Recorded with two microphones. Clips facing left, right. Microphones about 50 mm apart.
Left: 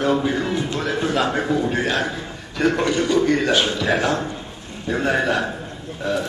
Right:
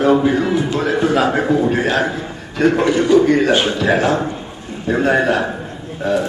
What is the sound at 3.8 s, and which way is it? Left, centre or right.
A man's voice, centre.